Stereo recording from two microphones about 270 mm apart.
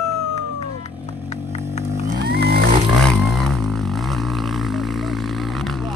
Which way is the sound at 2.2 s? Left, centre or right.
Right.